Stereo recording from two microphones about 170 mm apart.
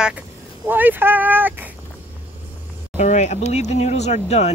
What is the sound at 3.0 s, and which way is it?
Speech, 45° left (ahead or behind).